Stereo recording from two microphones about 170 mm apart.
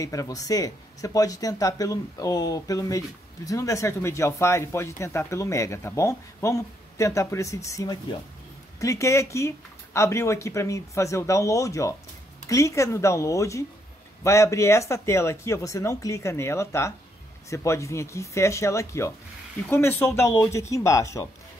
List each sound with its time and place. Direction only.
0.0 s speech: 20° left (ahead or behind)